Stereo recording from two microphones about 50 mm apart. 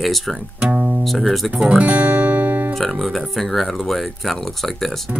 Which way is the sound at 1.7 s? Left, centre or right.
Right.